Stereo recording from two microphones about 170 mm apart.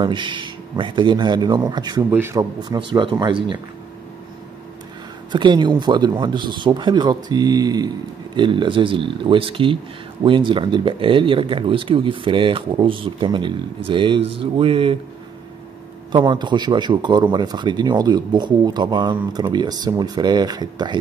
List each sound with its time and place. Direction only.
0.0 s a man's voice: 30° right (ahead or behind)
2.0 s a man's voice: 15° right (ahead or behind)
5.3 s a man's voice: 25° right (ahead or behind)
16.1 s a man's voice: 25° right (ahead or behind)